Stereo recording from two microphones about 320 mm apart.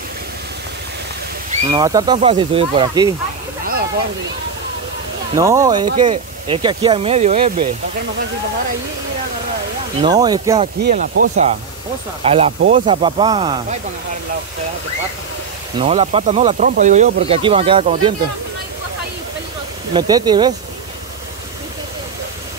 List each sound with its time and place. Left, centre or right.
1.5 s speech: centre
5.3 s speech: centre
10.0 s speech: centre
10.8 s speech: right
15.8 s speech: centre
19.9 s speech: centre